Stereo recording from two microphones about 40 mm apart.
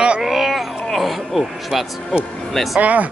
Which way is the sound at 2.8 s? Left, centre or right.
Right.